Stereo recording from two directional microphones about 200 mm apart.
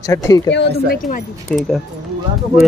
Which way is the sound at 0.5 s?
50° left (ahead or behind).